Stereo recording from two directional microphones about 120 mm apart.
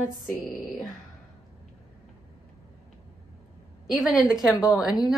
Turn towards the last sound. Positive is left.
turn(degrees=-5)  # may be behind; listen again after turning